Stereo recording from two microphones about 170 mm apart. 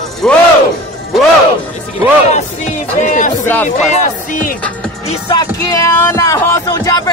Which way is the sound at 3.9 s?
50° left (ahead or behind).